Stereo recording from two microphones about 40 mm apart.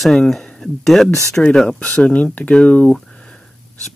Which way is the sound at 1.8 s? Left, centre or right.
Left.